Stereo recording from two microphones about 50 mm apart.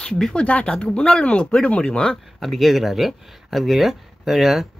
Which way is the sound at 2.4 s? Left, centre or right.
Centre.